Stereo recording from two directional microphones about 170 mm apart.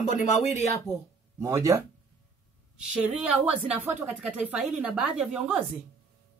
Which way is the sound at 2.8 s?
5° right (ahead or behind).